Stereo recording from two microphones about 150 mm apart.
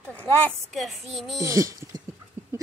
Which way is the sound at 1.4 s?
20° right (ahead or behind).